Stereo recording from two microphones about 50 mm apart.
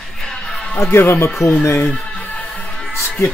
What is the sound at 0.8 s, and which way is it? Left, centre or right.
Speech, left.